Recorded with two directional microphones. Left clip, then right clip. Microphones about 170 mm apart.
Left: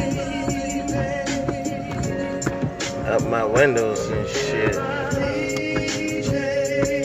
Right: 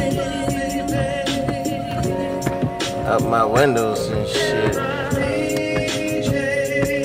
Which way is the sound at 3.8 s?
20° right (ahead or behind).